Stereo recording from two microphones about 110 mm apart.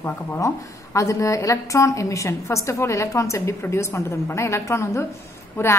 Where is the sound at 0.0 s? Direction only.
25° left (ahead or behind).